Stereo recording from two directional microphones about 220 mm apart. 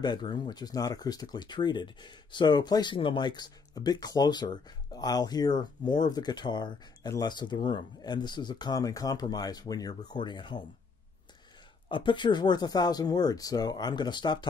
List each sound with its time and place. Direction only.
0.0 s speech: 20° left (ahead or behind)
11.9 s speech: 20° left (ahead or behind)